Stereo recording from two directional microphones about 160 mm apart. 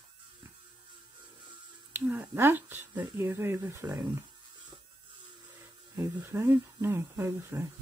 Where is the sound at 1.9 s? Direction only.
10° right (ahead or behind).